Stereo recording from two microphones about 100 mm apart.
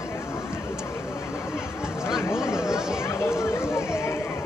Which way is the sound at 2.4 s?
30° left (ahead or behind).